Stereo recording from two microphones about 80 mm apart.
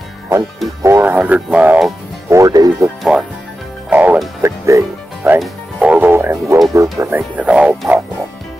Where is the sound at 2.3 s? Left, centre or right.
Right.